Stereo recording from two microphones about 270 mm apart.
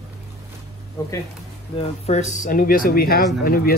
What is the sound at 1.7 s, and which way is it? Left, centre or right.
Speech, left.